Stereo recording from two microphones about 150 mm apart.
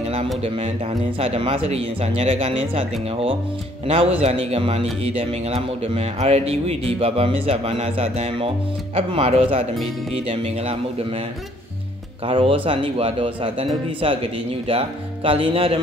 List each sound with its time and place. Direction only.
1.2 s a man's voice: 40° right (ahead or behind)
12.3 s speech: 35° right (ahead or behind)